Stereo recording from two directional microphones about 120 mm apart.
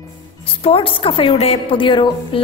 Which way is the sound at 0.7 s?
45° left (ahead or behind).